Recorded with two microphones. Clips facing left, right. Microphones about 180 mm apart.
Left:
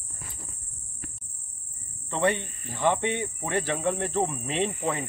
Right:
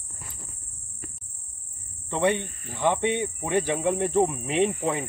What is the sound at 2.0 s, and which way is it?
Cricket, 15° right (ahead or behind).